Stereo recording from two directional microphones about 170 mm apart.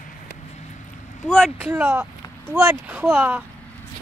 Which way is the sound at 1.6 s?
10° right (ahead or behind).